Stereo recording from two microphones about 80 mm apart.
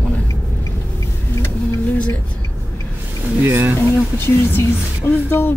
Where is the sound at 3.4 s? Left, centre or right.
Right.